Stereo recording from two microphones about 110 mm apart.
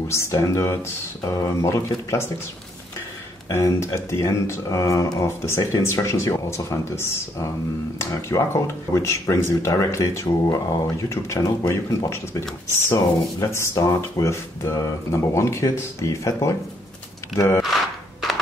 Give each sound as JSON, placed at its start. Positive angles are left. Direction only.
{"t": 0.1, "sound": "speech", "side_deg": 25}
{"t": 3.4, "sound": "speech", "side_deg": 25}
{"t": 17.6, "sound": "a sound", "side_deg": 0}